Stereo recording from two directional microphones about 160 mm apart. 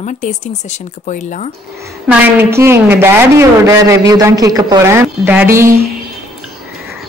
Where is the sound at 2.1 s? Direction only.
15° right (ahead or behind).